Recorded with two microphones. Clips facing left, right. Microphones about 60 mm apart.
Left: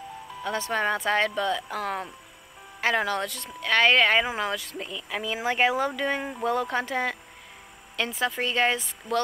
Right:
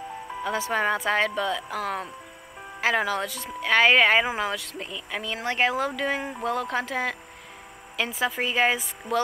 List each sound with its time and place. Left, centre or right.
0.4 s speech: centre